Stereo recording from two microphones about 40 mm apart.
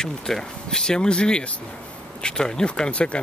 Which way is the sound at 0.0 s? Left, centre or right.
Centre.